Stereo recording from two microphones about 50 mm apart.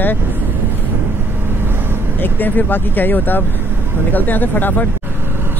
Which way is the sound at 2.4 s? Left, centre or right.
Left.